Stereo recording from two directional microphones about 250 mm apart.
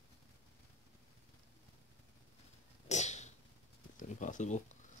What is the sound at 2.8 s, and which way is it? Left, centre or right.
Cat, left.